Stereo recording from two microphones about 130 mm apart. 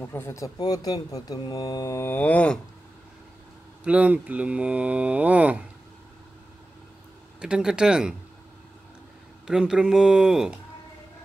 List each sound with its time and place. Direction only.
0.0 s speech: 20° left (ahead or behind)
3.8 s speech: 10° right (ahead or behind)
7.3 s speech: 5° right (ahead or behind)
9.5 s speech: 5° right (ahead or behind)